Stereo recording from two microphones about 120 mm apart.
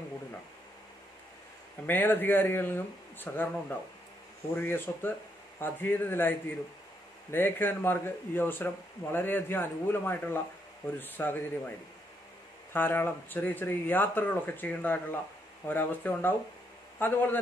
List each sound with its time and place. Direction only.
1.9 s speech: 15° left (ahead or behind)
4.6 s speech: 15° left (ahead or behind)
12.7 s speech: 15° left (ahead or behind)